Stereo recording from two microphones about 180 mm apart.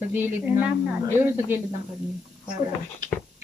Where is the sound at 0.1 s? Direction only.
10° right (ahead or behind).